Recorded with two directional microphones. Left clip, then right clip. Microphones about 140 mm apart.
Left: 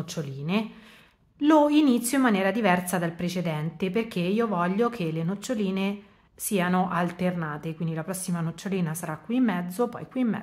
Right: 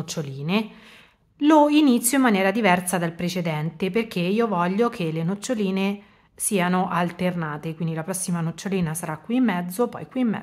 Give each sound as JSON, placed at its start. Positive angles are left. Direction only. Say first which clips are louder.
{"t": 0.0, "sound": "a woman's voice", "louder": "right 4 dB", "side_deg": -35}